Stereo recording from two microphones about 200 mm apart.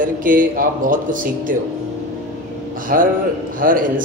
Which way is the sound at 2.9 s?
45° right (ahead or behind).